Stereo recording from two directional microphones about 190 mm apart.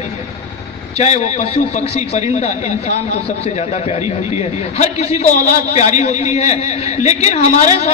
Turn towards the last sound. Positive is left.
turn(degrees=35)  # may be behind; listen again after turning